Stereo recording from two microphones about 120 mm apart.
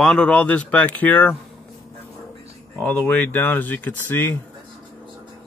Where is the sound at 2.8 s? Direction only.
15° left (ahead or behind).